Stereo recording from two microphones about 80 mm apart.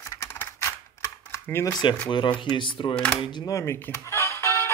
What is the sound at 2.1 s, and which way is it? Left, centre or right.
Speech, left.